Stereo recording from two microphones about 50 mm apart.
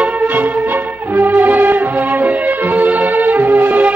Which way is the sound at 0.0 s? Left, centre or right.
Right.